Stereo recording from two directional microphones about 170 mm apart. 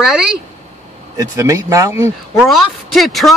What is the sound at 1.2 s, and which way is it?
Speech, 20° right (ahead or behind).